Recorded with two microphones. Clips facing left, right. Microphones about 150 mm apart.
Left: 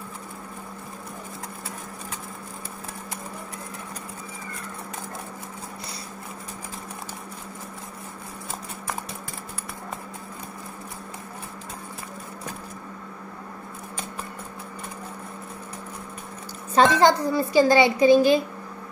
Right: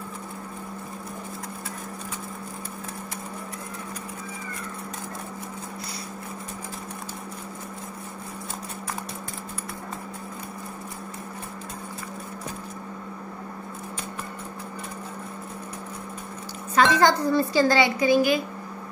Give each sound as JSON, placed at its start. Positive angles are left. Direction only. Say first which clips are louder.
{"t": 16.7, "sound": "a woman's voice", "louder": "left 2 dB", "side_deg": 30}